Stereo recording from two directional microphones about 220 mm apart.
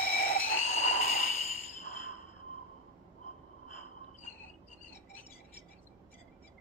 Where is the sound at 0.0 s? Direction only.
45° left (ahead or behind).